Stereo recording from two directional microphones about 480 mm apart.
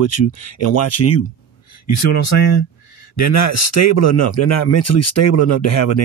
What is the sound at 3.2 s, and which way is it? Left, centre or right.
Speech, left.